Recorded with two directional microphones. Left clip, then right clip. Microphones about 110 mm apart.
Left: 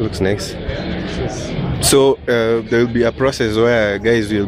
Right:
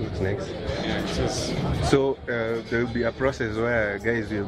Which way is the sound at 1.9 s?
45° left (ahead or behind).